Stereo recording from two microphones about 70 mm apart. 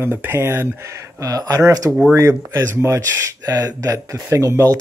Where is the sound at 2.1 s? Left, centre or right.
Right.